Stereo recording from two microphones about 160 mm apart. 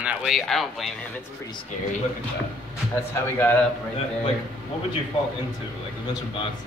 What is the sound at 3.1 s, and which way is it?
Speech, 15° left (ahead or behind).